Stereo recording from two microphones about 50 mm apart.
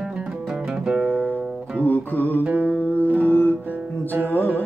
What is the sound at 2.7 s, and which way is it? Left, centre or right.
Music, left.